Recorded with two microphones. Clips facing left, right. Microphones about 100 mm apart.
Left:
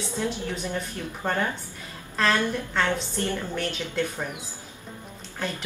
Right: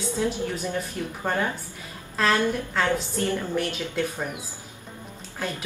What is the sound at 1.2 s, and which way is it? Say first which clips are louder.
A woman's voice: even; 10° right (ahead or behind).